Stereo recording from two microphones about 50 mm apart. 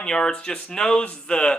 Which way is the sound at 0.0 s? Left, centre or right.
Centre.